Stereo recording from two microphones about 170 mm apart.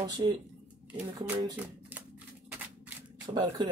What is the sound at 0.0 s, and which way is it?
Speech, 25° right (ahead or behind).